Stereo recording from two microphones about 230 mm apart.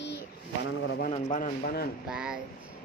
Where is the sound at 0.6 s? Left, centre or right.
Left.